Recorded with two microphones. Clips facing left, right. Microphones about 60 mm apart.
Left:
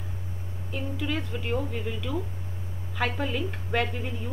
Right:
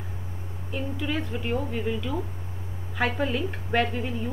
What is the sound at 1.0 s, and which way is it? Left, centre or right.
A woman's voice, centre.